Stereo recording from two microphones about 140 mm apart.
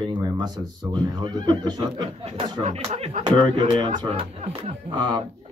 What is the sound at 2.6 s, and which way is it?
Speech, 50° right (ahead or behind).